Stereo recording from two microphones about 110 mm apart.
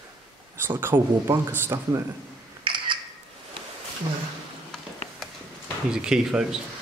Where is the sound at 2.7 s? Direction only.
45° right (ahead or behind).